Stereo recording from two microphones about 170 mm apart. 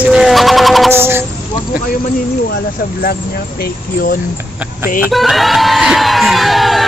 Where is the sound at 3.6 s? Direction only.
60° left (ahead or behind).